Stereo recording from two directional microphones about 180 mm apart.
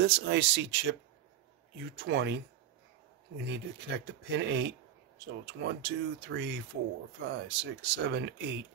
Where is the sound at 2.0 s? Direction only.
75° right (ahead or behind).